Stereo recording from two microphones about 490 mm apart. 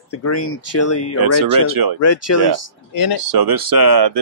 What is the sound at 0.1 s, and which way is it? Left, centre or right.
Speech, left.